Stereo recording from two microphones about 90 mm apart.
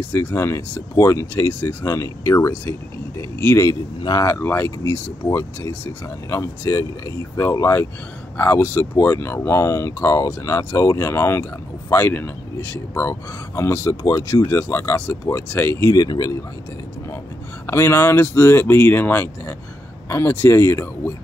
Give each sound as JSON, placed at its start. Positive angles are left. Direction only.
{"t": 0.1, "sound": "speech", "side_deg": 30}
{"t": 4.0, "sound": "speech", "side_deg": 50}
{"t": 4.3, "sound": "speech", "side_deg": 30}
{"t": 8.4, "sound": "speech", "side_deg": 25}
{"t": 15.9, "sound": "speech", "side_deg": 45}
{"t": 17.6, "sound": "speech", "side_deg": 30}